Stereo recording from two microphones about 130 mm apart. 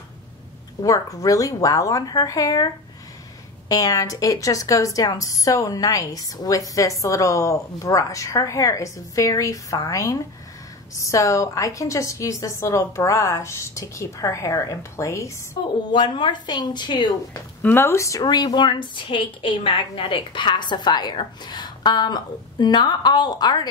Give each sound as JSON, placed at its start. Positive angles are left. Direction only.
{"t": 0.8, "sound": "a woman's voice", "side_deg": 25}
{"t": 15.9, "sound": "a woman's voice", "side_deg": 35}
{"t": 17.6, "sound": "a woman's voice", "side_deg": 15}